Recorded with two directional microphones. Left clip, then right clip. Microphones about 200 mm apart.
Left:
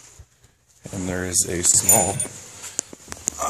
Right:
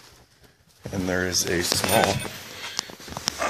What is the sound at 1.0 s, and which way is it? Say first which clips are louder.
Speech: right 1 dB; 15° left (ahead or behind).